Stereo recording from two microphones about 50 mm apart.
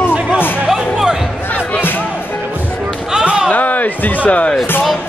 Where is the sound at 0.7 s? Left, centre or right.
Centre.